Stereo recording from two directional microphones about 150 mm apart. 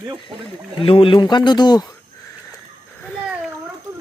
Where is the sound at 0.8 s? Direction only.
35° left (ahead or behind).